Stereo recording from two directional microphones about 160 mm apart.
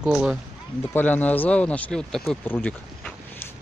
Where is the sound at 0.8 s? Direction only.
10° left (ahead or behind).